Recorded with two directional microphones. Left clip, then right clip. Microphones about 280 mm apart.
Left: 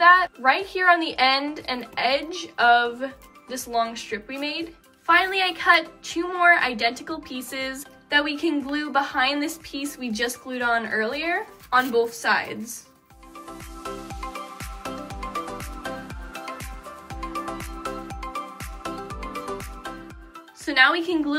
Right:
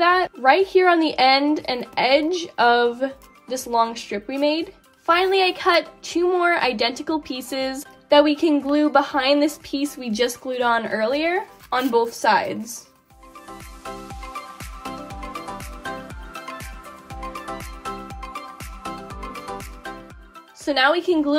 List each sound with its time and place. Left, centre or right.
0.0 s a woman's voice: right
20.6 s a woman's voice: centre